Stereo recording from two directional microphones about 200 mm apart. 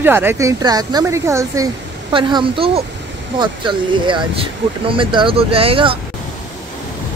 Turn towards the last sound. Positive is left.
turn(degrees=-25)  # may be behind; listen again after turning